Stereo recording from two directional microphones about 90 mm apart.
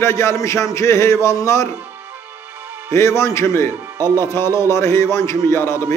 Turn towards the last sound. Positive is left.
turn(degrees=30)  # may be behind; listen again after turning